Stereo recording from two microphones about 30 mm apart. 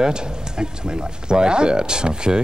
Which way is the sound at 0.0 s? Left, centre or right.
Right.